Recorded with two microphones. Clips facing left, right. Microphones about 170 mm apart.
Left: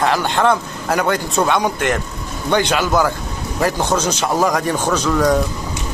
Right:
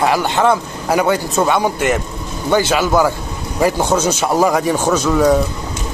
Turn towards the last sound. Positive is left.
turn(degrees=-5)  # may be behind; listen again after turning